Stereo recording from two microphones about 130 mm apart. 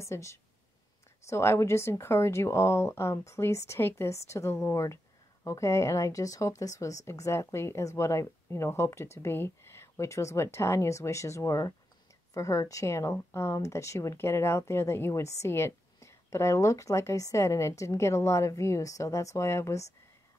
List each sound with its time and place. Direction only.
0.0 s speech: 25° left (ahead or behind)